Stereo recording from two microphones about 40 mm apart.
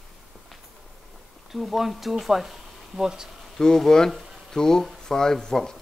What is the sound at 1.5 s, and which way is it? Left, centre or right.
Speech, centre.